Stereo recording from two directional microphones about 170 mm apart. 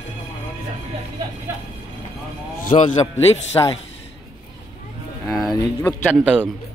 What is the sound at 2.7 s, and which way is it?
Speech, 30° left (ahead or behind).